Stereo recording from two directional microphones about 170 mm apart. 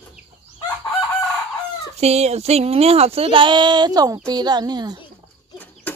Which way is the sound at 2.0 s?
40° right (ahead or behind).